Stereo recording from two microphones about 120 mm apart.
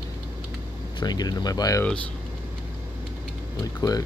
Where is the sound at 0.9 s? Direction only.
35° left (ahead or behind).